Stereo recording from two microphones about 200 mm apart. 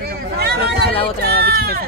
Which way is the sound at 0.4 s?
55° right (ahead or behind).